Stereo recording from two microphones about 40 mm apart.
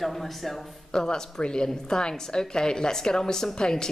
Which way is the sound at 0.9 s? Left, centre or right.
Centre.